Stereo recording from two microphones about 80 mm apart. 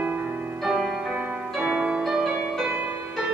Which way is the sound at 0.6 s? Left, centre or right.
Centre.